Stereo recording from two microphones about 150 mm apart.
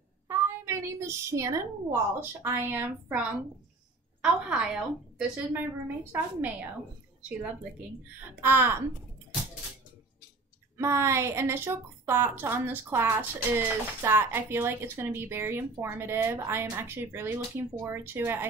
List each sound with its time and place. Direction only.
0.3 s a woman's voice: 20° right (ahead or behind)
10.8 s a woman's voice: 20° right (ahead or behind)